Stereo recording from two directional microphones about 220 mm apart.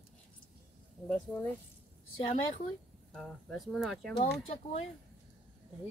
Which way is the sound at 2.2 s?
30° left (ahead or behind).